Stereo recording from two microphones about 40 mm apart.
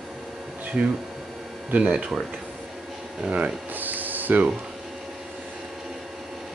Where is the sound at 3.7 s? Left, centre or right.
Right.